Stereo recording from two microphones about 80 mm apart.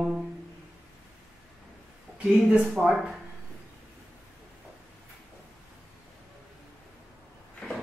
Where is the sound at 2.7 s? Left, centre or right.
Centre.